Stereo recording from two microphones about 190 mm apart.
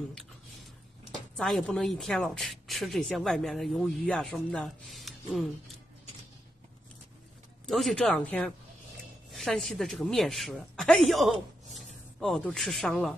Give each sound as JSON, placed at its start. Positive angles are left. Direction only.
{"t": 1.3, "sound": "speech", "side_deg": 0}
{"t": 7.6, "sound": "speech", "side_deg": 0}